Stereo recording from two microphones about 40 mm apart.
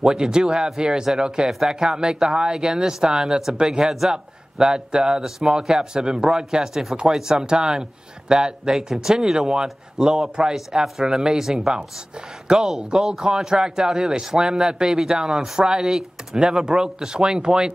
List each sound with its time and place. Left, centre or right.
0.0 s speech: centre
1.5 s speech: centre
1.8 s speech: right